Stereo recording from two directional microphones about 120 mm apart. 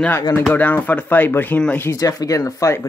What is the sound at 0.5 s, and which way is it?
Speech, 15° left (ahead or behind).